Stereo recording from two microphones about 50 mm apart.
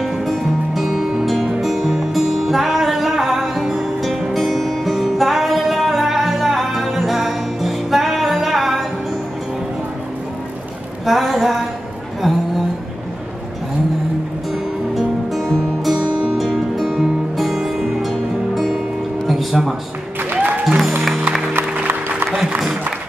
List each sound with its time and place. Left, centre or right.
0.0 s music: centre
11.1 s a sound: centre
15.0 s music: centre
19.2 s music: centre
21.5 s music: right